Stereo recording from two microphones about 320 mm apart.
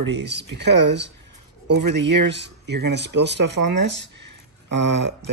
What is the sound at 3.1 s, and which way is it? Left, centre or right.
Speech, right.